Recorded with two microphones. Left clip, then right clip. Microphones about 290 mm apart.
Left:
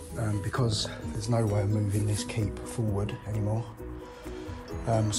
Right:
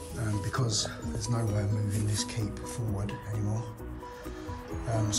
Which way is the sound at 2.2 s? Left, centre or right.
Centre.